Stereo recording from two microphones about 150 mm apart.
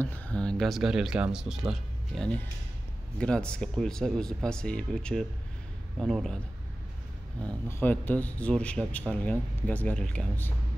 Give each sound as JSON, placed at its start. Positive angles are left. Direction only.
{"t": 0.0, "sound": "speech", "side_deg": 10}
{"t": 7.4, "sound": "speech", "side_deg": 10}